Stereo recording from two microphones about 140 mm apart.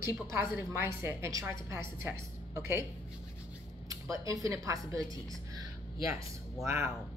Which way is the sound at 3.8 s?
25° right (ahead or behind).